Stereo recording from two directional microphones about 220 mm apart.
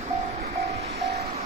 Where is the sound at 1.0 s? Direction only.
45° right (ahead or behind).